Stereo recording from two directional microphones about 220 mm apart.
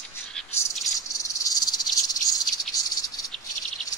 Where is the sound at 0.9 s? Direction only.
15° left (ahead or behind).